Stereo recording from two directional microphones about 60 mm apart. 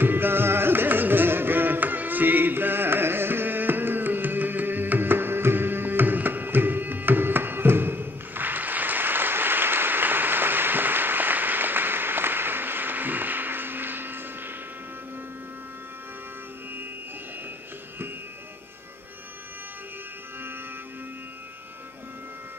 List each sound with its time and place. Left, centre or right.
0.0 s carnatic music: right